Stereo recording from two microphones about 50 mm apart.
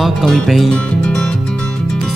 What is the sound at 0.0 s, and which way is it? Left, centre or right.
Music, centre.